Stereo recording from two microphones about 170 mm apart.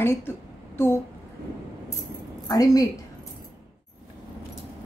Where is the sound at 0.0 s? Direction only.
15° left (ahead or behind).